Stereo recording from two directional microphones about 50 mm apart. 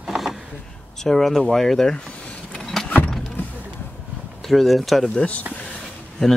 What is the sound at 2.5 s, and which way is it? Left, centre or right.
Vehicle, centre.